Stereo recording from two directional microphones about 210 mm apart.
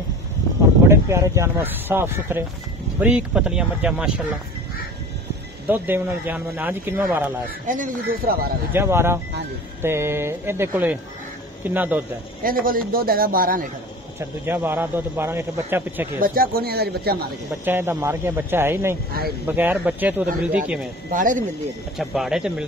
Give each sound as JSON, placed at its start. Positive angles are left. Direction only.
{"t": 0.8, "sound": "speech", "side_deg": -15}
{"t": 5.7, "sound": "speech", "side_deg": -10}
{"t": 7.6, "sound": "speech", "side_deg": -40}
{"t": 8.7, "sound": "speech", "side_deg": -10}
{"t": 12.4, "sound": "a man's voice", "side_deg": -40}
{"t": 14.4, "sound": "speech", "side_deg": -10}
{"t": 16.2, "sound": "a man's voice", "side_deg": -45}
{"t": 17.6, "sound": "speech", "side_deg": -10}
{"t": 21.1, "sound": "speech", "side_deg": -40}
{"t": 21.9, "sound": "speech", "side_deg": 0}